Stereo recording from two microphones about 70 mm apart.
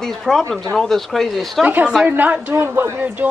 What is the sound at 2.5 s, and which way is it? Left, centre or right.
Speech, right.